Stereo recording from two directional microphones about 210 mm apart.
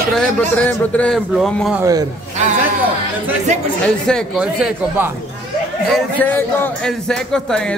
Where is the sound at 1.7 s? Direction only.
15° right (ahead or behind).